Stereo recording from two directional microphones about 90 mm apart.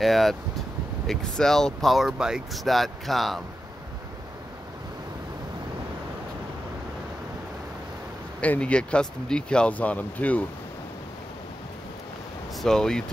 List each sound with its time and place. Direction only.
0.0 s speech: centre (ahead or behind)
8.4 s speech: 15° left (ahead or behind)
12.6 s speech: 5° left (ahead or behind)